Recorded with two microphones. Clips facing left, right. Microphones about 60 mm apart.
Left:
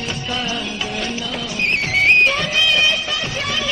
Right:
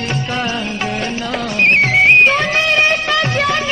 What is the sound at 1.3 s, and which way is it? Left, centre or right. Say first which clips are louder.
Speech: right 7 dB; right.